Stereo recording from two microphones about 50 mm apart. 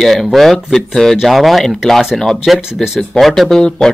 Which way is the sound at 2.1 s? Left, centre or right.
Centre.